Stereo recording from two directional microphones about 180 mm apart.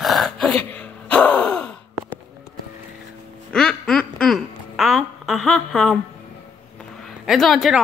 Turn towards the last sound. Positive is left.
turn(degrees=0)  # may be behind; listen again after turning